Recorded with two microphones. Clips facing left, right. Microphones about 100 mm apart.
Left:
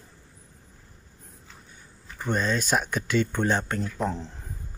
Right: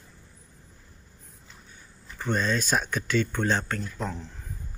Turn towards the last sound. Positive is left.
turn(degrees=25)  # may be behind; listen again after turning